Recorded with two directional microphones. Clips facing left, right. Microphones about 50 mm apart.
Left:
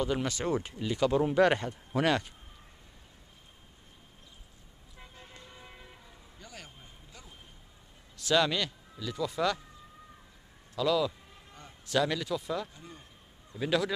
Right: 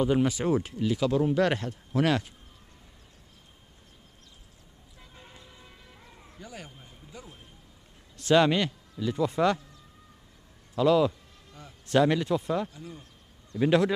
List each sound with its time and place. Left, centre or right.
0.0 s speech: centre
5.1 s toot: centre
5.5 s church bell: centre
6.4 s a sound: centre
8.2 s a man's voice: right
10.8 s speech: right